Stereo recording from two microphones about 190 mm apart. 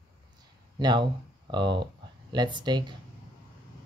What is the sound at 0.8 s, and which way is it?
Speech, 20° right (ahead or behind).